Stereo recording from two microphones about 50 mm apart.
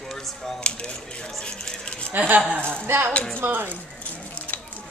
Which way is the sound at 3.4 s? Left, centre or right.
Right.